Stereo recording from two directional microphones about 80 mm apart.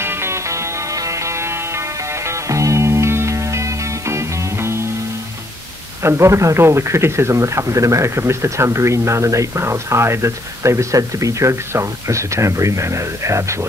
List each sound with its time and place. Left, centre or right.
0.0 s music: right
6.0 s speech: right